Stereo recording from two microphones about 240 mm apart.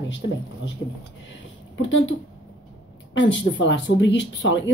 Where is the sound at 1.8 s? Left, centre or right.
Left.